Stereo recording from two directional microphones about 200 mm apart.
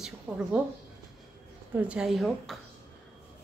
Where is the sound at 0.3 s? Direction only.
5° right (ahead or behind).